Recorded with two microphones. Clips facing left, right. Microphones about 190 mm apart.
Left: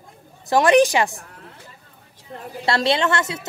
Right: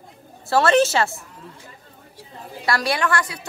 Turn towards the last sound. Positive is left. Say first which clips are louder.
# left 2 dB
turn(degrees=25)  # may be behind; listen again after turning